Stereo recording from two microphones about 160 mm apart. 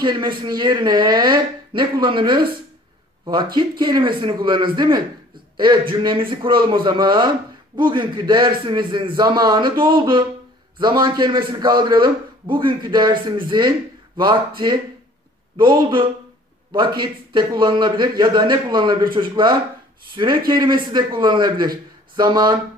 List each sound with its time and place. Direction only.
0.0 s a man's voice: 30° right (ahead or behind)
3.5 s a man's voice: 30° right (ahead or behind)
15.5 s a man's voice: 30° right (ahead or behind)